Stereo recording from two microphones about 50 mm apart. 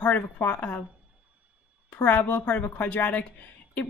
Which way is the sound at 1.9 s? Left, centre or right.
Left.